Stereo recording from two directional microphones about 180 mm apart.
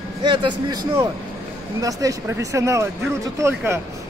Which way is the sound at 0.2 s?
25° right (ahead or behind).